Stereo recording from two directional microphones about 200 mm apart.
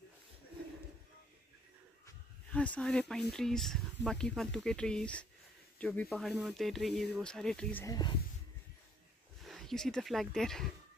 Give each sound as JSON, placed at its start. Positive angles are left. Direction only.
{"t": 2.5, "sound": "speech", "side_deg": 5}
{"t": 7.8, "sound": "speech", "side_deg": 20}
{"t": 9.4, "sound": "speech", "side_deg": 0}